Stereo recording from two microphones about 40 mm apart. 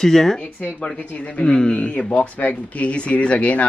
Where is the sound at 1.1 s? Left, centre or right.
Left.